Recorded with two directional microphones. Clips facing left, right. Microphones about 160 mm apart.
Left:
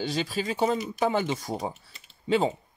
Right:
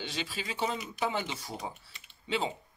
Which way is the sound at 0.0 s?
40° left (ahead or behind).